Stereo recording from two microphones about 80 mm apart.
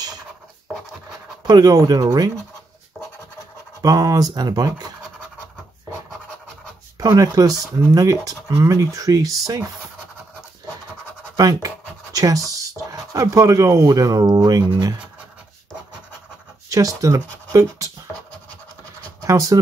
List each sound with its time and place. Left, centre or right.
1.5 s speech: right
3.8 s speech: right
7.0 s speech: right
11.3 s speech: right
16.6 s speech: right
19.2 s speech: right